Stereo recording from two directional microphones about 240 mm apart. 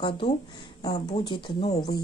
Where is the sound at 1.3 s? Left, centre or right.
Left.